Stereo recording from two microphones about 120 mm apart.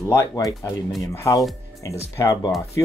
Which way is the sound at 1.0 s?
25° left (ahead or behind).